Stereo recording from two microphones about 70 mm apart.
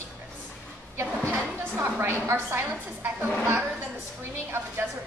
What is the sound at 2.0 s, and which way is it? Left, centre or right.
A woman's voice, right.